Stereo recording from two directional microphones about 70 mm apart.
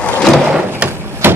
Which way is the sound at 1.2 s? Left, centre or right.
Right.